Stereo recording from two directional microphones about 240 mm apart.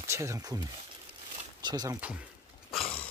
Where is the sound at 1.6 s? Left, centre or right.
Centre.